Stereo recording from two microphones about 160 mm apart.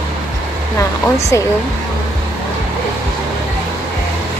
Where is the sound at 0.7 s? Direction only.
20° left (ahead or behind).